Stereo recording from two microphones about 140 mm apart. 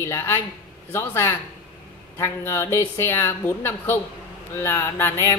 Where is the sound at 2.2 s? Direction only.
20° left (ahead or behind).